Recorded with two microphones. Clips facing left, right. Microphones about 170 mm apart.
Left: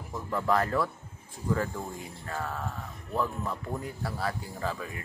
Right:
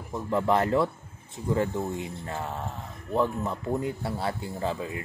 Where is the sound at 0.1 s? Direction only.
25° right (ahead or behind).